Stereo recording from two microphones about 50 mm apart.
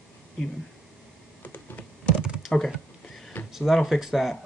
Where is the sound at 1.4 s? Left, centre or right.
Left.